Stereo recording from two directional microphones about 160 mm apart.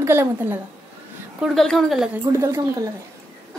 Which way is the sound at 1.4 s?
Centre (ahead or behind).